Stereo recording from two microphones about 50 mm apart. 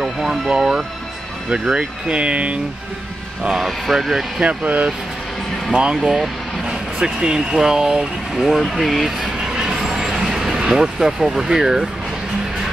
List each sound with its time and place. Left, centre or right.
0.0 s speech: centre
3.4 s speech: centre
4.4 s speech: right
5.7 s speech: centre
8.5 s speech: centre
9.5 s vehicle: centre